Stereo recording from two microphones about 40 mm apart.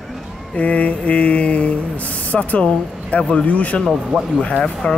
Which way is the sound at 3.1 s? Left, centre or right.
Left.